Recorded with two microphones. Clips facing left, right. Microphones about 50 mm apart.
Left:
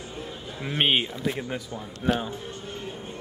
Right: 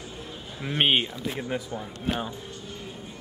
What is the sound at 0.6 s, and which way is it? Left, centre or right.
Speech, centre.